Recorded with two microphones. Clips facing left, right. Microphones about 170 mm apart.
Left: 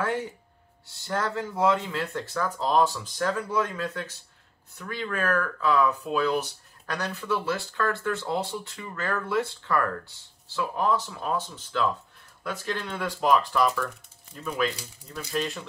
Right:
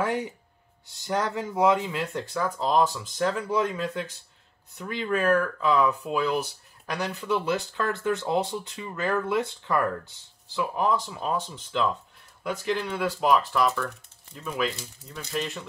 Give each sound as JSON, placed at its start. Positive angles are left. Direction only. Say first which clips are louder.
{"t": 0.8, "sound": "speech", "louder": "right 2 dB", "side_deg": -15}